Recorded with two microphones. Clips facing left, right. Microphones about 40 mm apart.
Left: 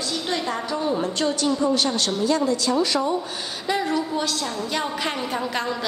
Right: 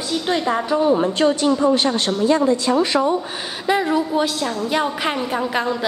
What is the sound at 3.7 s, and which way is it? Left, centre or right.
A woman's voice, right.